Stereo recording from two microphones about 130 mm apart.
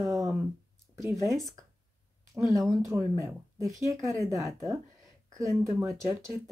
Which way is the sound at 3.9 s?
25° right (ahead or behind).